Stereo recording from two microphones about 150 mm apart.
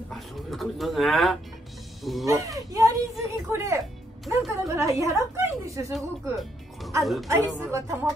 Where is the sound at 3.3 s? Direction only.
20° right (ahead or behind).